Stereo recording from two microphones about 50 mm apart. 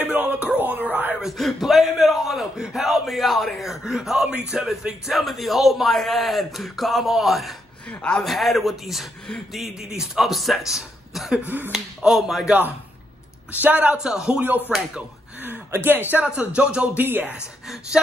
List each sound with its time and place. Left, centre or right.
0.3 s music: right
0.6 s speech: right
1.2 s a man's voice: centre
11.4 s a man's voice: right
11.7 s speech: centre
13.5 s a man's voice: right
13.9 s speech: centre
14.7 s speech: right
15.4 s speech: right
16.2 s speech: right
16.9 s a man's voice: right
17.9 s speech: centre